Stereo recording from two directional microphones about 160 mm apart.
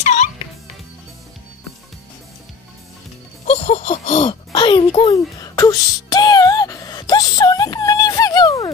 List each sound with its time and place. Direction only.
0.0 s music: 50° left (ahead or behind)
3.4 s a sound: 45° left (ahead or behind)
4.5 s music: 25° left (ahead or behind)